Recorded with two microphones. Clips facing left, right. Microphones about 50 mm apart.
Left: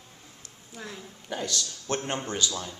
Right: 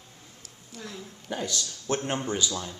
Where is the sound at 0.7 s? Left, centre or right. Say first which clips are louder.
Even; centre.